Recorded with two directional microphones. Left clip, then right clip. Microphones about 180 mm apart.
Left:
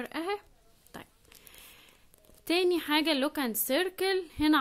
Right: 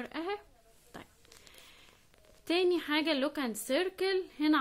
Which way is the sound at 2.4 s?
30° left (ahead or behind).